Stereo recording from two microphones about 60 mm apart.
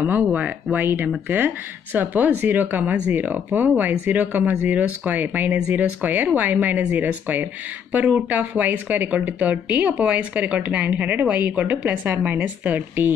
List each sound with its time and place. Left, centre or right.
0.0 s a woman's voice: right